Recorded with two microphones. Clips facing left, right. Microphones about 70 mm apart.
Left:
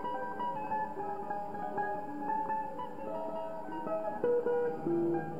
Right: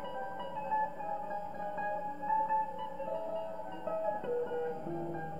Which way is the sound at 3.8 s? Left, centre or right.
Left.